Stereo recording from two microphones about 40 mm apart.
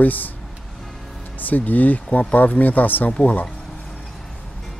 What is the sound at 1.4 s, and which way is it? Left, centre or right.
Speech, left.